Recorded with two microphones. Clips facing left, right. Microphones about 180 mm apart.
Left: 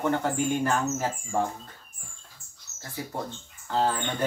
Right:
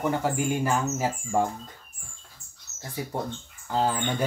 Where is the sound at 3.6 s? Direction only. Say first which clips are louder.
Even; 15° right (ahead or behind).